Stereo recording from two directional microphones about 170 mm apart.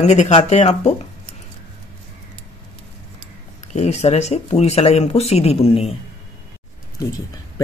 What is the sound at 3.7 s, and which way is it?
Speech, 40° left (ahead or behind).